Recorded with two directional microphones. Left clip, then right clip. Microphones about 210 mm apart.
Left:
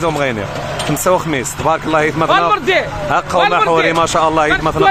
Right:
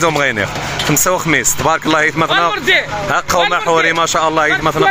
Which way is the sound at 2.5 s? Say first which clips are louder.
Even; 30° left (ahead or behind).